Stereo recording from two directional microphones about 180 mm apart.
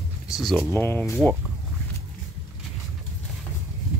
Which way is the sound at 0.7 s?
15° left (ahead or behind).